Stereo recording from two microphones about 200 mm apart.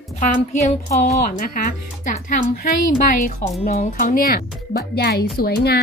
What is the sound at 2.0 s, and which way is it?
A child's voice, 40° left (ahead or behind).